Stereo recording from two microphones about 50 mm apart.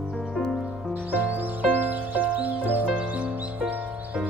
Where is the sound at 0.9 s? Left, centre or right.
Right.